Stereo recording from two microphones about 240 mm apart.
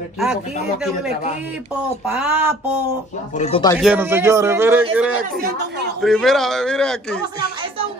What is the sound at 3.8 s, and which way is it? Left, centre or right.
A man's voice, centre.